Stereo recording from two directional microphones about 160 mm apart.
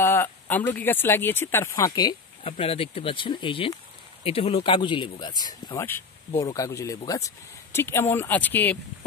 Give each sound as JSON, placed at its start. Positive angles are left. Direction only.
{"t": 0.0, "sound": "speech", "side_deg": 15}
{"t": 2.5, "sound": "speech", "side_deg": 35}